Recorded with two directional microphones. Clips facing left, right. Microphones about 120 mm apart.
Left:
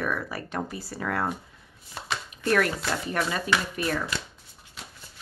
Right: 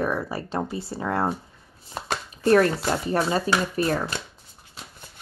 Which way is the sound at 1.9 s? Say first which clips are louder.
Right 4 dB; 40° right (ahead or behind).